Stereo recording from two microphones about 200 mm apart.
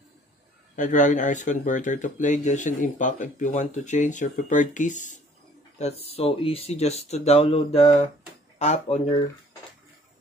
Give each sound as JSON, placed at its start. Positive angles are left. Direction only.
{"t": 0.7, "sound": "speech", "side_deg": 40}